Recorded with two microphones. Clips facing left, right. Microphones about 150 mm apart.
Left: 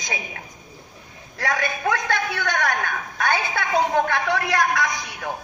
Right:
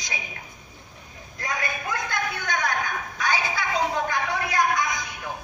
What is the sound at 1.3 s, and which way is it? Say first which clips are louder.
A man's voice: left 5 dB; 80° left.